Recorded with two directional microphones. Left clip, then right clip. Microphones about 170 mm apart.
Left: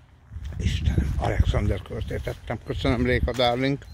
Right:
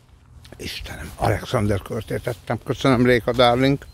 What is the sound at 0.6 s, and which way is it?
Speech, 40° right (ahead or behind).